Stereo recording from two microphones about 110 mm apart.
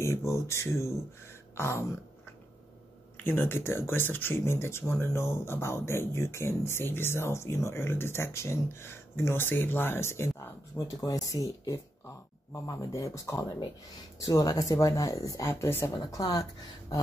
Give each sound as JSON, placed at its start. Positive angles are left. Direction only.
{"t": 0.0, "sound": "speech", "side_deg": 25}
{"t": 3.3, "sound": "speech", "side_deg": 20}